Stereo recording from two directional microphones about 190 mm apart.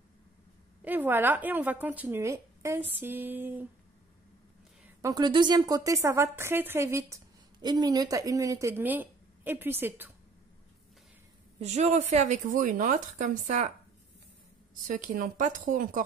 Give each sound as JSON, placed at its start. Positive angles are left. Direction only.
{"t": 0.8, "sound": "a woman's voice", "side_deg": -10}
{"t": 5.0, "sound": "a woman's voice", "side_deg": -20}
{"t": 11.6, "sound": "speech", "side_deg": -35}
{"t": 14.9, "sound": "a woman's voice", "side_deg": -45}